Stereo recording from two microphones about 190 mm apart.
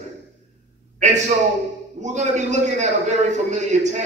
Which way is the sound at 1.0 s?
40° right (ahead or behind).